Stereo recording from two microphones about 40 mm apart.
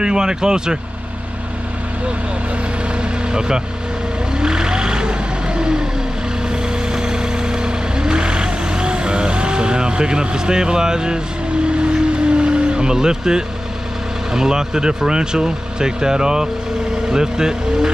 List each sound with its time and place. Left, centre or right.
0.0 s speech: centre
3.3 s speech: centre
4.4 s vehicle: centre
6.9 s vehicle: centre
14.3 s speech: centre